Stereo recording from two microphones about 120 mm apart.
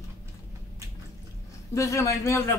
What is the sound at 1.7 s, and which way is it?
Speech, 25° left (ahead or behind).